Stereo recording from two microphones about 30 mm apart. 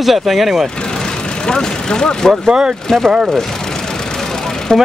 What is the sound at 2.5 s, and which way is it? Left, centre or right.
Speech, right.